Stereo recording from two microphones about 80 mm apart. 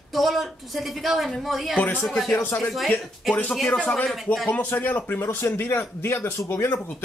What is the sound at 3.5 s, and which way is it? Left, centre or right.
Speech, centre.